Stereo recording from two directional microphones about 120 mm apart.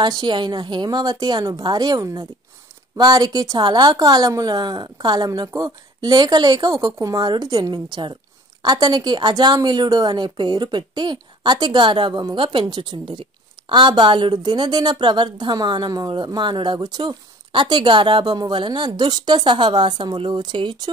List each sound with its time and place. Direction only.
0.0 s a woman's voice: 40° right (ahead or behind)